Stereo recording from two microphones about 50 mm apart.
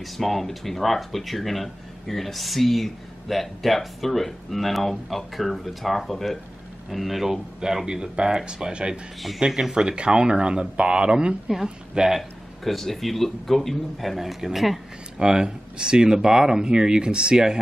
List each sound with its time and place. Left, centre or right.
0.0 s speech: centre
12.2 s speech: centre
15.1 s speech: centre